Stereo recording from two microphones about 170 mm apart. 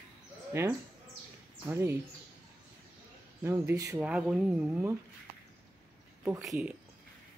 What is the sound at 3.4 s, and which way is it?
Speech, 15° right (ahead or behind).